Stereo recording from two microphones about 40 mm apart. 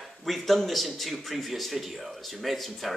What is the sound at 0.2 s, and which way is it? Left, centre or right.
A man's voice, centre.